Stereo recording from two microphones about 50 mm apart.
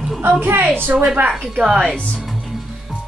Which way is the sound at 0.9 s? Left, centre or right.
Right.